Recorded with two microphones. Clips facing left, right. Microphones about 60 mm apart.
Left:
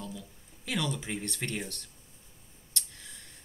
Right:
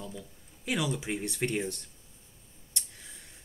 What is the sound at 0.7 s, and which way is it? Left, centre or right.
Speech, centre.